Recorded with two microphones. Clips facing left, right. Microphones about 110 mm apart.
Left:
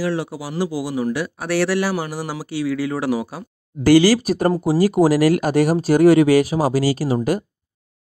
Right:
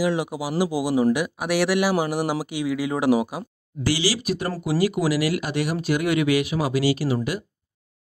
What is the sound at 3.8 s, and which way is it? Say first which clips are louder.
Speech: left 11 dB; 50° left (ahead or behind).